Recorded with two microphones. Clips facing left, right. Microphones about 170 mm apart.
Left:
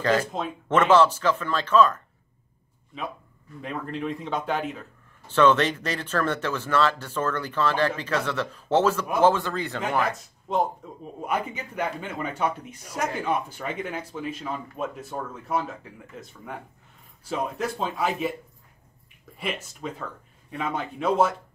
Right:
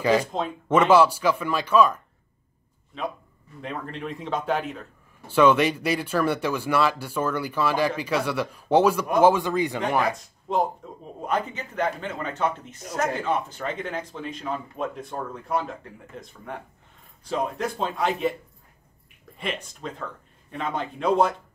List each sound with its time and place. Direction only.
0.0 s speech: 10° right (ahead or behind)
3.6 s speech: centre (ahead or behind)
5.3 s speech: 10° right (ahead or behind)
10.5 s a man's voice: centre (ahead or behind)
19.3 s speech: 5° left (ahead or behind)